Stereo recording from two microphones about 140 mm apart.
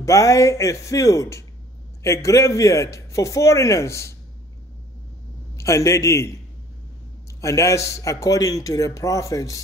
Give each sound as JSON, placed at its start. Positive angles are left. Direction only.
{"t": 0.0, "sound": "a man's voice", "side_deg": 20}
{"t": 5.6, "sound": "a man's voice", "side_deg": 20}
{"t": 7.4, "sound": "a man's voice", "side_deg": 20}